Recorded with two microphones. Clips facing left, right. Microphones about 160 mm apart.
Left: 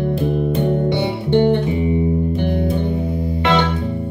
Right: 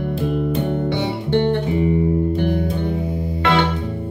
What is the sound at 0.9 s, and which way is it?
Music, 15° left (ahead or behind).